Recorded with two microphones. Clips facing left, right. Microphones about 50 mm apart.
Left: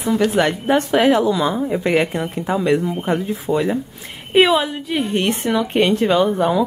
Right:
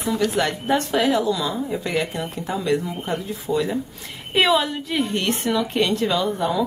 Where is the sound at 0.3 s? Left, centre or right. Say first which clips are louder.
Left 4 dB; left.